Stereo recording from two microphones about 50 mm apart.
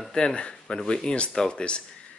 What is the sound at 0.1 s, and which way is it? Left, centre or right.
Speech, left.